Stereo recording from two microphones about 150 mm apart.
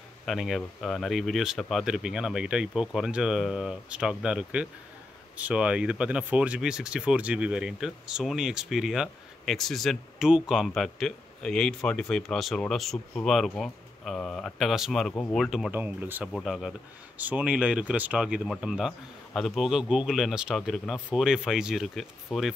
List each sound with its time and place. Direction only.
0.2 s speech: centre (ahead or behind)
15.7 s speech: 10° right (ahead or behind)
16.3 s speech: centre (ahead or behind)